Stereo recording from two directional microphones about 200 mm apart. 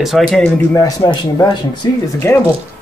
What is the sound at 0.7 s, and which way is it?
Speech, 20° left (ahead or behind).